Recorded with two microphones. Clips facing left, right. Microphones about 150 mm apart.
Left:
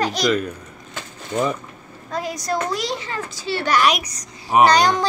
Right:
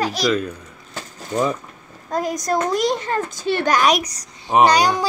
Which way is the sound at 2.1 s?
45° right (ahead or behind).